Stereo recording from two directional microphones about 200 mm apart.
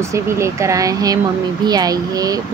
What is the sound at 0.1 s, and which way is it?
Speech, 15° right (ahead or behind).